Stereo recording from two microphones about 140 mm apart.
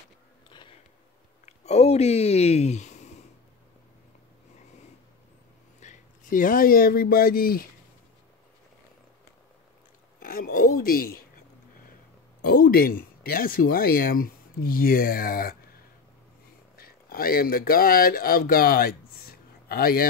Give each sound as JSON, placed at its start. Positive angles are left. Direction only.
{"t": 1.4, "sound": "speech", "side_deg": 50}
{"t": 5.8, "sound": "speech", "side_deg": 65}
{"t": 10.2, "sound": "speech", "side_deg": 90}
{"t": 16.7, "sound": "speech", "side_deg": 90}